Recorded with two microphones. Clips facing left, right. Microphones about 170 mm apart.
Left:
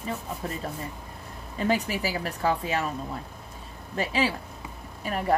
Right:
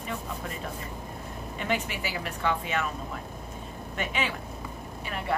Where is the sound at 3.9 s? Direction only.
35° left (ahead or behind).